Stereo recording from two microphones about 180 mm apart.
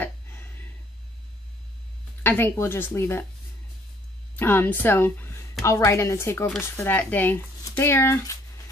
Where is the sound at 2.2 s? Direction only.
10° left (ahead or behind).